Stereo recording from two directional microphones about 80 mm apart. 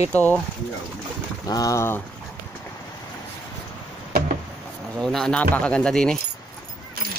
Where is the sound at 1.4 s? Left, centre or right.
Left.